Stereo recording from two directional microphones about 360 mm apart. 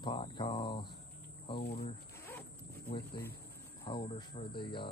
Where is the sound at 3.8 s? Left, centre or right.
Centre.